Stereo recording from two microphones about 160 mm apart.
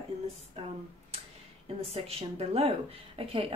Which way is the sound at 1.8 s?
40° right (ahead or behind).